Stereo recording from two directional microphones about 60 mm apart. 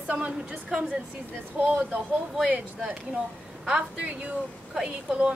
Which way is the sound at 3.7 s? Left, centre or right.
Centre.